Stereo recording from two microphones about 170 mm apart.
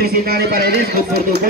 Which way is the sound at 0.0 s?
60° right (ahead or behind).